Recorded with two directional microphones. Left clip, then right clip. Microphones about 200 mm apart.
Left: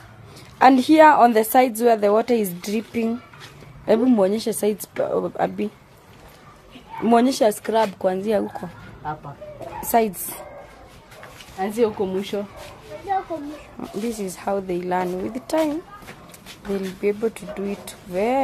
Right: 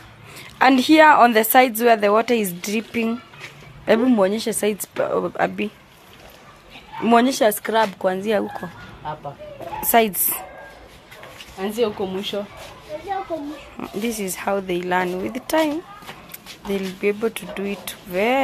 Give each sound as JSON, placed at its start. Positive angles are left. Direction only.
{"t": 0.6, "sound": "a woman's voice", "side_deg": 5}
{"t": 7.1, "sound": "a woman's voice", "side_deg": 10}
{"t": 9.8, "sound": "speech", "side_deg": 0}
{"t": 11.6, "sound": "speech", "side_deg": 55}
{"t": 13.7, "sound": "speech", "side_deg": 0}
{"t": 16.7, "sound": "speech", "side_deg": 0}